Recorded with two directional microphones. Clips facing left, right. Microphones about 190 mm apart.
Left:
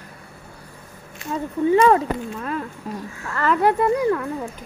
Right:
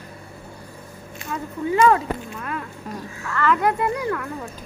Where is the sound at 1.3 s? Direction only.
30° left (ahead or behind).